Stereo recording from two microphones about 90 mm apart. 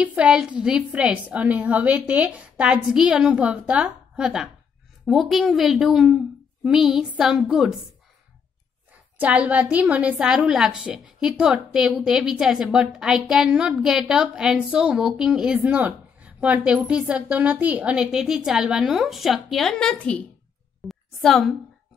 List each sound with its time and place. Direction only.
0.0 s a woman's voice: 15° right (ahead or behind)
8.9 s a woman's voice: 15° right (ahead or behind); by 19.9 s 5° left (ahead or behind)
19.9 s a woman's voice: 15° left (ahead or behind)
20.9 s a sound: 5° left (ahead or behind)